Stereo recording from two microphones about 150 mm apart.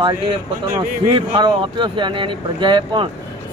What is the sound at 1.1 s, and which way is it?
Speech, 30° right (ahead or behind).